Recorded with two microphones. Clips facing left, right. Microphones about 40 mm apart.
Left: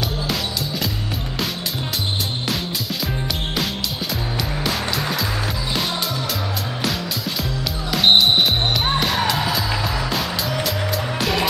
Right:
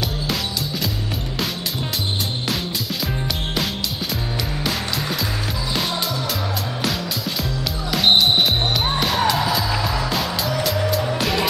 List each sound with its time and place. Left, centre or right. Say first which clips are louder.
7.9 s music: left 1 dB; centre